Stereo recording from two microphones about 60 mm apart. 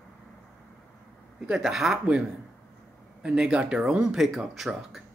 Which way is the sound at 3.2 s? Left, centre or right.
Centre.